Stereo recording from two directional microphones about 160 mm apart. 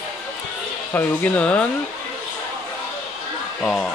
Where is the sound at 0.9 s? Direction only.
10° left (ahead or behind).